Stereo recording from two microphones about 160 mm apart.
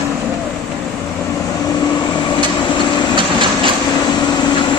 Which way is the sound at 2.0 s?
25° left (ahead or behind).